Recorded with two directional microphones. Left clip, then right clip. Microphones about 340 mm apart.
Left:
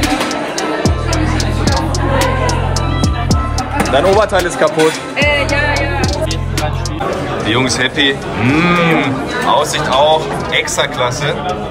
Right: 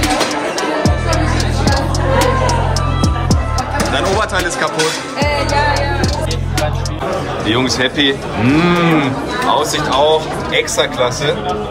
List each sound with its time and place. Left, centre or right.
0.8 s music: centre
3.9 s speech: centre
5.2 s music: centre
7.4 s a man's voice: centre